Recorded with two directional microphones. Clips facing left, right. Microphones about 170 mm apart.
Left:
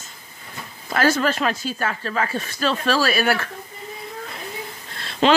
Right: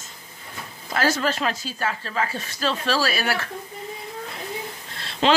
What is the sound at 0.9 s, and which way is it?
Speech, 55° left (ahead or behind).